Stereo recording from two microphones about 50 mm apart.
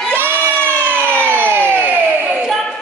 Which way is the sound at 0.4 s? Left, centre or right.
Left.